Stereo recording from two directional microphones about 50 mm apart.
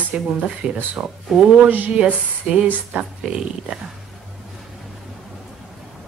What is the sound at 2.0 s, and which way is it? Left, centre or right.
Speech, right.